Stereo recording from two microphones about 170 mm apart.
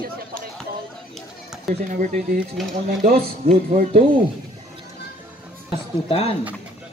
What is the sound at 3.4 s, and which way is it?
Speech, 50° right (ahead or behind).